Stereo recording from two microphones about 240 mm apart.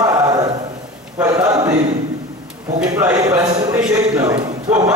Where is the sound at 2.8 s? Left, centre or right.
Centre.